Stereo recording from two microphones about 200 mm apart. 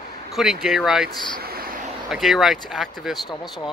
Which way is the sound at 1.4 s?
50° right (ahead or behind).